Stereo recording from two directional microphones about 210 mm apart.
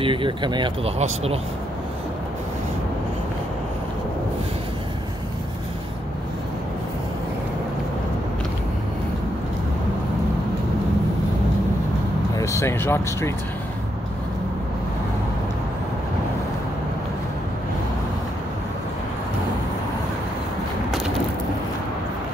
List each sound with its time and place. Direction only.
0.0 s speech: 25° right (ahead or behind)
12.4 s speech: 15° left (ahead or behind)